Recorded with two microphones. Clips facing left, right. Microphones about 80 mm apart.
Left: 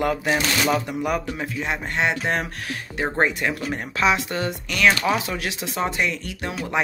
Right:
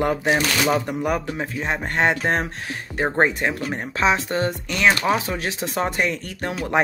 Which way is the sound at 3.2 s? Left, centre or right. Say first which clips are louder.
Right 1 dB; right.